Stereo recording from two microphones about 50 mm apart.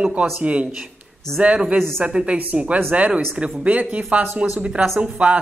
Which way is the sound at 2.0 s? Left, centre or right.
Right.